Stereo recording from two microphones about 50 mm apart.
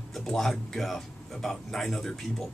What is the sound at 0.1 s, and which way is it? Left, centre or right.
Speech, centre.